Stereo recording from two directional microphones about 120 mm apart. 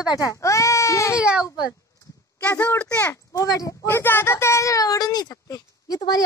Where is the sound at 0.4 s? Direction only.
25° left (ahead or behind).